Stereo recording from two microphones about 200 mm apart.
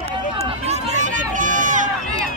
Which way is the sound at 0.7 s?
35° right (ahead or behind).